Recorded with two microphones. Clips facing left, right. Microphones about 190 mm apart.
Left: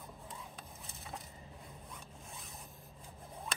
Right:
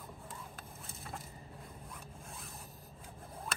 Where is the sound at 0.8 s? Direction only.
Centre (ahead or behind).